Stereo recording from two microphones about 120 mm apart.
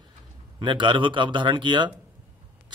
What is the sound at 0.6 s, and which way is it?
A man's voice, 40° right (ahead or behind).